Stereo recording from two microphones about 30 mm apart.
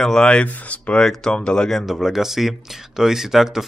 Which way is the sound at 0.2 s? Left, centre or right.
Left.